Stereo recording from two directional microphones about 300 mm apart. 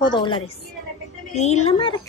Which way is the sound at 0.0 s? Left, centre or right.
Centre.